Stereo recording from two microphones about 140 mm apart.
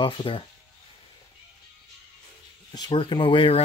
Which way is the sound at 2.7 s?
30° left (ahead or behind).